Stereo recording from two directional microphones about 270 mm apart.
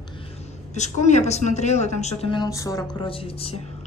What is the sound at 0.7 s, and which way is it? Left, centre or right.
A woman's voice, left.